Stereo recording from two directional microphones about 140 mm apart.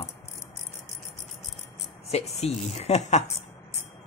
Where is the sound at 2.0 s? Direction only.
50° left (ahead or behind).